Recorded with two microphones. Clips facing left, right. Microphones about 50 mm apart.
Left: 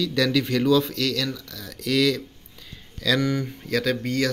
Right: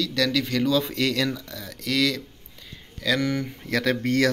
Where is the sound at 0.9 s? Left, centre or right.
Centre.